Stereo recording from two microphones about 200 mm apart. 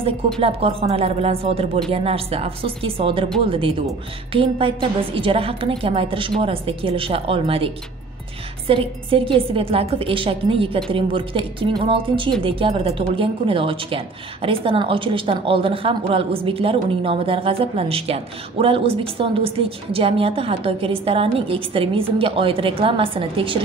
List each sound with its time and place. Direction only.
0.4 s speech: 30° right (ahead or behind)